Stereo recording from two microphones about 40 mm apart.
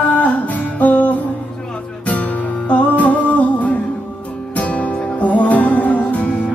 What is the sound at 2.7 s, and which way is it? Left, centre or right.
Music, left.